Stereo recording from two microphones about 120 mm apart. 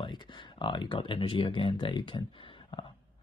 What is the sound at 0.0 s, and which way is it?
Speech, 40° left (ahead or behind).